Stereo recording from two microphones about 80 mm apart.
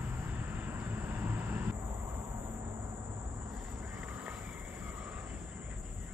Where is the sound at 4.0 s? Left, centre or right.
Centre.